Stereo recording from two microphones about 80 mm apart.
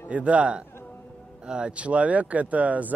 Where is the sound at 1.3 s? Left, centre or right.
Centre.